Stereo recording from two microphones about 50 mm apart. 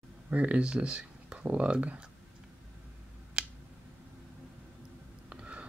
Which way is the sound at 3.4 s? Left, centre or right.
Right.